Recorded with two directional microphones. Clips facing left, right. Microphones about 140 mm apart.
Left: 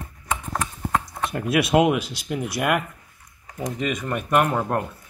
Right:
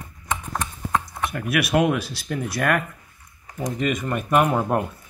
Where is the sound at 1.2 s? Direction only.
25° left (ahead or behind).